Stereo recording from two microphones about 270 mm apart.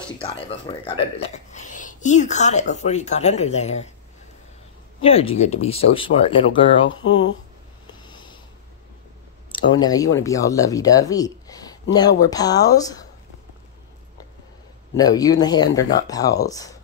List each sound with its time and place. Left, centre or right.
0.2 s speech: left
5.0 s speech: left
7.8 s a sound: centre
9.5 s speech: centre
15.0 s speech: centre